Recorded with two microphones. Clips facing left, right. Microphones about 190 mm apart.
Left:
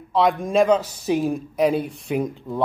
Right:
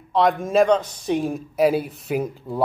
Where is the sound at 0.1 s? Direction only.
Centre (ahead or behind).